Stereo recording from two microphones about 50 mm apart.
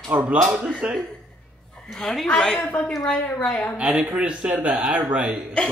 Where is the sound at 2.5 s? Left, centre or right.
Left.